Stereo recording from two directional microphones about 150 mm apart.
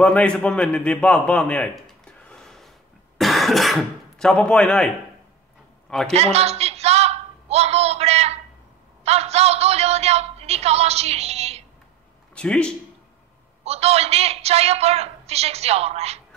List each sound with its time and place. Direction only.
0.0 s a man's voice: 10° left (ahead or behind)
6.0 s a sound: 45° right (ahead or behind)
12.4 s speech: 5° left (ahead or behind)
13.7 s a woman's voice: 45° right (ahead or behind)